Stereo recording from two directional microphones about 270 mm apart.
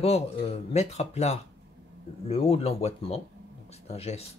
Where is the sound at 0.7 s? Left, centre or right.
Left.